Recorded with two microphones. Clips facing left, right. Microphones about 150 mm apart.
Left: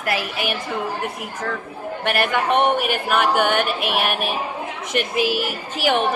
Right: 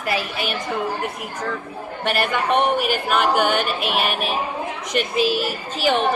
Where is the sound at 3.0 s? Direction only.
10° left (ahead or behind).